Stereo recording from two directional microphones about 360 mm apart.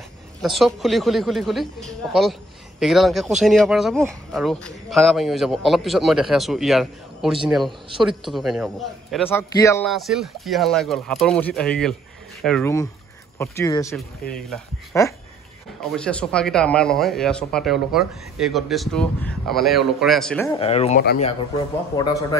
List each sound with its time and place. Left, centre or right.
0.4 s speech: centre
20.5 s speech: centre
21.9 s speech: centre